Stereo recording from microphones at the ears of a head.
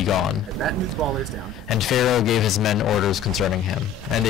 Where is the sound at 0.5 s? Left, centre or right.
Right.